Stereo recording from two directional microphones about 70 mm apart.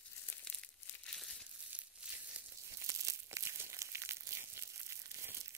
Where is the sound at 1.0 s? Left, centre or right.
Centre.